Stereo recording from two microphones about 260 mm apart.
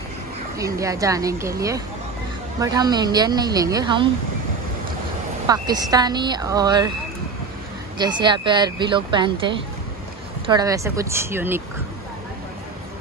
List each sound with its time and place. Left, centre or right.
0.6 s speech: centre
5.5 s speech: centre
8.0 s speech: centre